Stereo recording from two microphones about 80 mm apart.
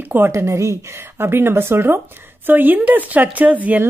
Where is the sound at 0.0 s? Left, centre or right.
Right.